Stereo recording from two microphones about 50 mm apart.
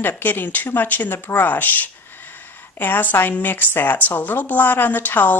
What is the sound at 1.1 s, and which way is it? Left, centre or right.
Speech, left.